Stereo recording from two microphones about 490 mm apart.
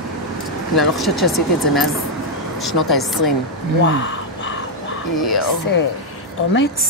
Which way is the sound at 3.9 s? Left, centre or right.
Left.